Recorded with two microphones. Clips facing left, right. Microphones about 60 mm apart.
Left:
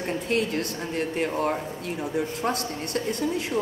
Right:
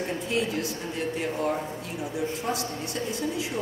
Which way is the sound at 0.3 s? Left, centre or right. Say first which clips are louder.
Left 3 dB; left.